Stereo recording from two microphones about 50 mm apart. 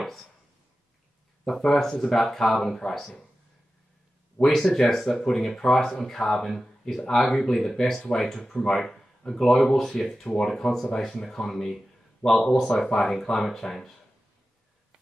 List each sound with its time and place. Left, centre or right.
0.0 s a sound: centre
1.4 s speech: centre
4.4 s speech: centre
12.2 s speech: left
12.5 s speech: centre